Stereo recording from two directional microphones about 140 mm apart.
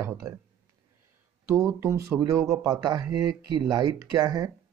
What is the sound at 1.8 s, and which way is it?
Speech, 20° right (ahead or behind).